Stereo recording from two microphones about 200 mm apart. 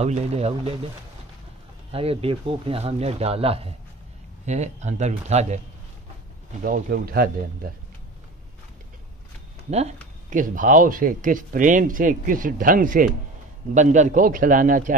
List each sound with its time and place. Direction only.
0.0 s speech: 30° right (ahead or behind)
1.9 s speech: 30° right (ahead or behind)
6.6 s speech: 50° right (ahead or behind)
9.7 s speech: 35° right (ahead or behind)